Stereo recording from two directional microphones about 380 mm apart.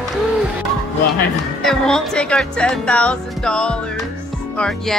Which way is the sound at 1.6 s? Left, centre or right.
Centre.